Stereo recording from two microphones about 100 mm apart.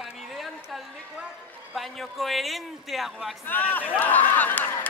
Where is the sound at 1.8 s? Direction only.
Centre (ahead or behind).